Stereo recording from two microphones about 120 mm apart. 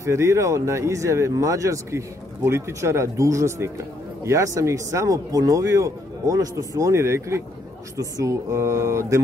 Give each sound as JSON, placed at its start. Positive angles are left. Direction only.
{"t": 0.0, "sound": "speech", "side_deg": -25}